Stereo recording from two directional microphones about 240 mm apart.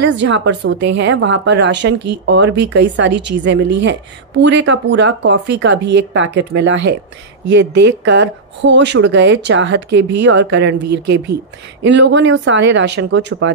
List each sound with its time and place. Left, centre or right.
0.0 s speech: right